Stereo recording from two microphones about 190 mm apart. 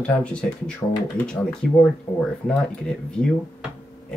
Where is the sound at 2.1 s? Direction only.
10° left (ahead or behind).